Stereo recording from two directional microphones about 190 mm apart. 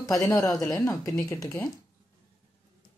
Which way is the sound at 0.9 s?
Centre (ahead or behind).